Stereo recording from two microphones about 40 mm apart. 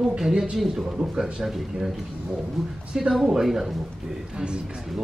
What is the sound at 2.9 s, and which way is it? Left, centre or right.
Speech, centre.